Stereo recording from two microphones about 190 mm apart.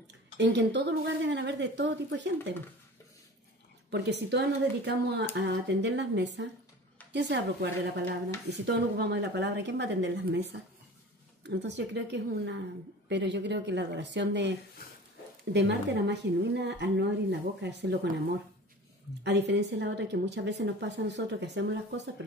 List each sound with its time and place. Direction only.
0.4 s a woman's voice: 65° right (ahead or behind)
3.9 s a woman's voice: 65° right (ahead or behind)
19.2 s a woman's voice: 65° right (ahead or behind)